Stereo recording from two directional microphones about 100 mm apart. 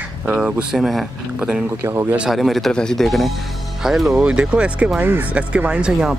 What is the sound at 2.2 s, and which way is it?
Speech, centre (ahead or behind).